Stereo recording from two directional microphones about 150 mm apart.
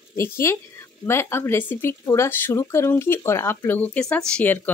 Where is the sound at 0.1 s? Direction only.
20° left (ahead or behind).